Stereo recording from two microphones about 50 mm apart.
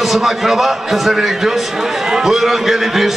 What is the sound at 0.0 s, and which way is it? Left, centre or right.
A man's voice, centre.